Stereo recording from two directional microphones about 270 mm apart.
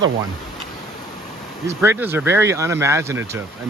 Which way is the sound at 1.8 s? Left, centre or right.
Centre.